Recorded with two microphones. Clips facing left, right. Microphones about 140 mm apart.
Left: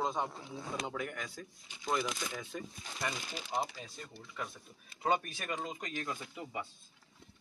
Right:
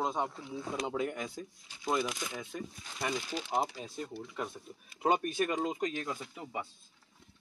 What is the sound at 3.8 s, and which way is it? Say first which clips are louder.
A man's voice: right 8 dB; 20° right (ahead or behind).